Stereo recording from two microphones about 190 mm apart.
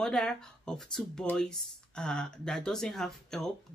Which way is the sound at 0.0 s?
5° left (ahead or behind).